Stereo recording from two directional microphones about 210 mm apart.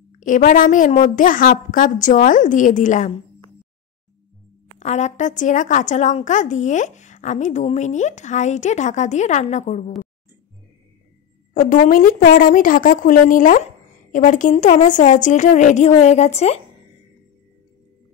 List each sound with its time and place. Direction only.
0.2 s a woman's voice: 40° left (ahead or behind)
4.7 s a woman's voice: 30° left (ahead or behind)
11.5 s a woman's voice: 40° left (ahead or behind)